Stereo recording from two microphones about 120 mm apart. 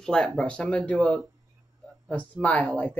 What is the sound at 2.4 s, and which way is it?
Speech, 10° left (ahead or behind).